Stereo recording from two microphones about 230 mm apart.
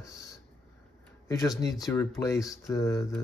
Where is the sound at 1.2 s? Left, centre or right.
Centre.